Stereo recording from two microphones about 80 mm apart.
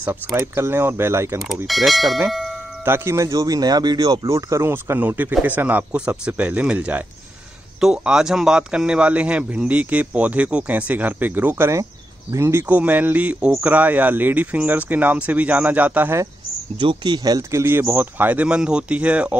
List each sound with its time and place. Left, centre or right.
0.6 s speech: right
1.7 s speech: centre
2.8 s speech: right
3.3 s speech: right
4.3 s speech: right
5.0 s a man's voice: right
12.6 s speech: centre
16.8 s speech: right
17.2 s speech: right
17.5 s a man's voice: right; by 19.3 s centre